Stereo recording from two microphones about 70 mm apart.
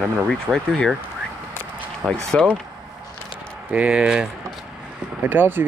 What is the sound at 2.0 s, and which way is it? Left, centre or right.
Speech, centre.